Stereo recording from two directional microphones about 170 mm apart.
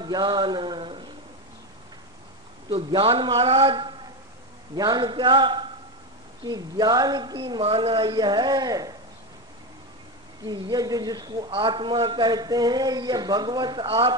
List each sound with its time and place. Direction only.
0.0 s a sound: 25° right (ahead or behind)
2.7 s a man's voice: 30° right (ahead or behind)
10.4 s a man's voice: 25° right (ahead or behind)